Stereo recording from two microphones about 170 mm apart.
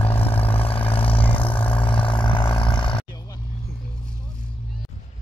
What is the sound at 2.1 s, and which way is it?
Vehicle, 30° left (ahead or behind).